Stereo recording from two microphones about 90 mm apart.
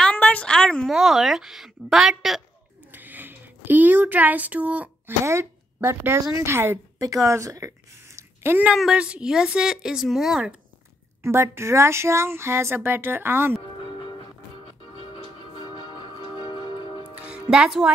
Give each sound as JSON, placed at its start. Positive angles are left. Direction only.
{"t": 0.0, "sound": "a sound", "side_deg": 15}
{"t": 0.8, "sound": "a woman's voice", "side_deg": -5}
{"t": 2.9, "sound": "a sound", "side_deg": -20}
{"t": 5.2, "sound": "a woman's voice", "side_deg": -30}
{"t": 8.2, "sound": "a sound", "side_deg": -25}
{"t": 8.7, "sound": "a woman's voice", "side_deg": -10}
{"t": 11.2, "sound": "speech", "side_deg": -30}
{"t": 15.7, "sound": "music", "side_deg": 55}
{"t": 17.2, "sound": "music", "side_deg": -10}